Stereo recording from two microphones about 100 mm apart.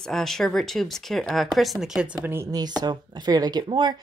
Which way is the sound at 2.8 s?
45° right (ahead or behind).